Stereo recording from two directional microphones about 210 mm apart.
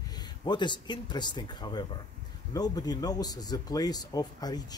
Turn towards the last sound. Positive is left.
turn(degrees=20)  # may be behind; listen again after turning